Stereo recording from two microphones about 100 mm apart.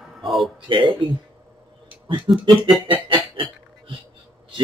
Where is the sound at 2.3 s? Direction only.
55° right (ahead or behind).